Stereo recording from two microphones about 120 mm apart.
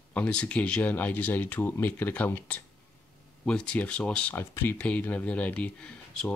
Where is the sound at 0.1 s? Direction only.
10° left (ahead or behind).